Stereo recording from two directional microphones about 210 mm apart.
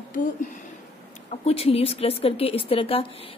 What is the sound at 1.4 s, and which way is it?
A woman's voice, 30° left (ahead or behind).